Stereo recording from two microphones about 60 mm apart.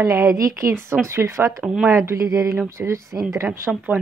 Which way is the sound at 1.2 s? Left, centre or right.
Right.